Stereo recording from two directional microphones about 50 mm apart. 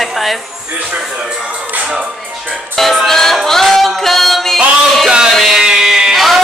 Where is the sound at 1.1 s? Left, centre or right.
Centre.